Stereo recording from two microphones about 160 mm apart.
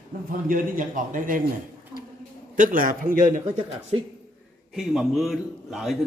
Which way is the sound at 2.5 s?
60° right (ahead or behind).